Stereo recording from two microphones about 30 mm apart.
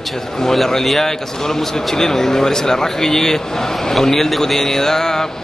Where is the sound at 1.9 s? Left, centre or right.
Centre.